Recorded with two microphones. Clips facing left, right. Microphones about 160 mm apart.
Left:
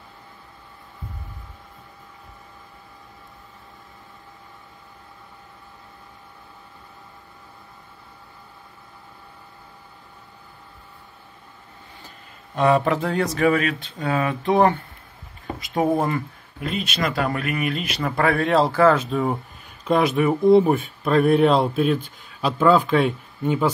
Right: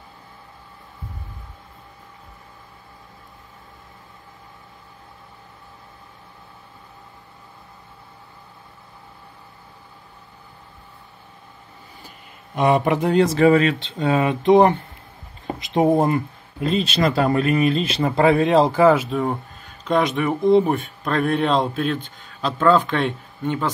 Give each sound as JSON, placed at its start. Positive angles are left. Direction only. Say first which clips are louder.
{"t": 12.5, "sound": "speech", "louder": "right 1 dB", "side_deg": -15}
{"t": 19.0, "sound": "speech", "louder": "even", "side_deg": 0}